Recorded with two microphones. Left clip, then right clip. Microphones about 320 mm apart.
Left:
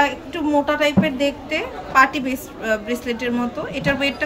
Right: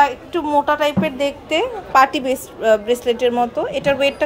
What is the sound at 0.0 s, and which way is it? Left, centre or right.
A woman's voice, centre.